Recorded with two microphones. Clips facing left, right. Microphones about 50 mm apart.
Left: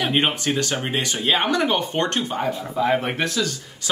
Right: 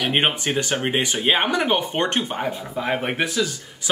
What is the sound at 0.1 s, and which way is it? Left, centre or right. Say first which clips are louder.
Speech: even; right.